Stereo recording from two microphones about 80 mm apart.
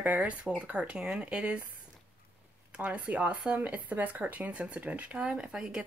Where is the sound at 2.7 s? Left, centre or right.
Centre.